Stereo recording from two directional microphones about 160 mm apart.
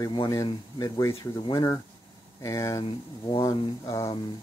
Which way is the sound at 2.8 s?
35° left (ahead or behind).